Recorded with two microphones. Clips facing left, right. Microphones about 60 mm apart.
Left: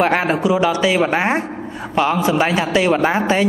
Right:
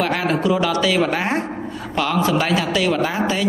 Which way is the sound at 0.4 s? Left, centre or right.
Centre.